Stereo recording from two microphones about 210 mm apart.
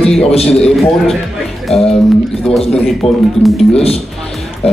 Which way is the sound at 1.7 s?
30° left (ahead or behind).